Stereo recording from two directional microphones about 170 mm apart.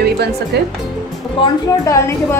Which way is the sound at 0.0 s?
75° right (ahead or behind).